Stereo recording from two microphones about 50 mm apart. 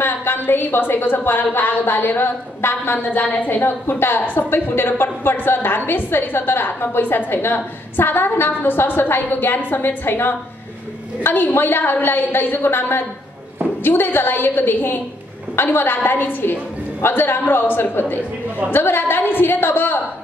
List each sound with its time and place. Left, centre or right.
0.0 s a woman's voice: left